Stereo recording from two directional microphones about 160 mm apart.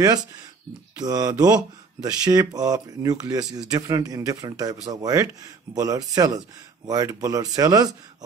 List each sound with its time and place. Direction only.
0.9 s speech: 25° right (ahead or behind)